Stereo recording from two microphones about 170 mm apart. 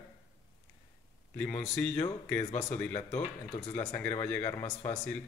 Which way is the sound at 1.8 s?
5° left (ahead or behind).